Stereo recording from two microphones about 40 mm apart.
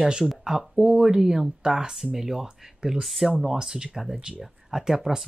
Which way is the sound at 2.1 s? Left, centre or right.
Centre.